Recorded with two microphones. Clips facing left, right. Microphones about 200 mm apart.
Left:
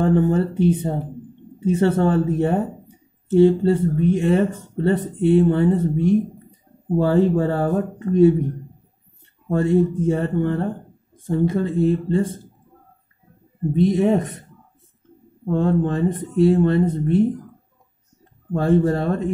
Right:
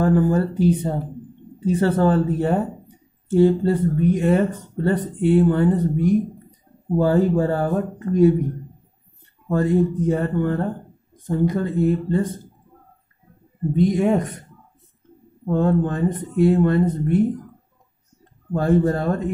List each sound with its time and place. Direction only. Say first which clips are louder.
0.0 s speech: even; 25° left (ahead or behind)
9.5 s speech: left 1 dB; 25° left (ahead or behind)
13.7 s speech: left 1 dB; 25° left (ahead or behind)
15.6 s speech: even; 25° left (ahead or behind)
18.5 s speech: left 1 dB; 30° left (ahead or behind)